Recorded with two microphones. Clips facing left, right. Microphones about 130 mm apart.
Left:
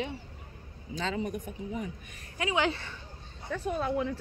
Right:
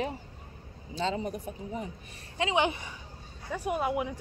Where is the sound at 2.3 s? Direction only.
25° right (ahead or behind).